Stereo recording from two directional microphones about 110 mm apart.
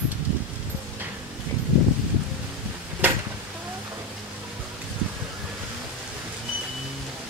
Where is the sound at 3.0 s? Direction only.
15° right (ahead or behind).